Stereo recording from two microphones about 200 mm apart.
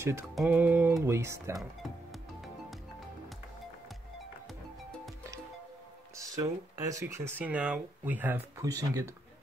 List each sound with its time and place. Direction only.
0.0 s speech: 10° right (ahead or behind)
6.1 s speech: 15° right (ahead or behind)